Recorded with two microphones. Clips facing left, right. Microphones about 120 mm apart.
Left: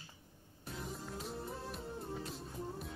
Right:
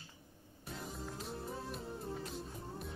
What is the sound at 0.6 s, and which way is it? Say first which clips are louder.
Music: even; centre (ahead or behind).